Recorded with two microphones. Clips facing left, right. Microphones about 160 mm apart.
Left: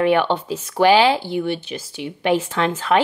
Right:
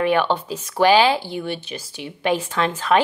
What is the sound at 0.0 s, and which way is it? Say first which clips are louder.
Speech: left 2 dB; 15° left (ahead or behind).